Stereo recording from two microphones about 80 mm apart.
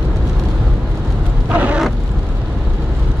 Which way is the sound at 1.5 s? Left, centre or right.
Centre.